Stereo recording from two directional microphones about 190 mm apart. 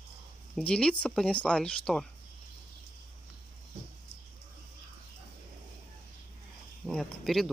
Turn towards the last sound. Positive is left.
turn(degrees=0)  # may be behind; listen again after turning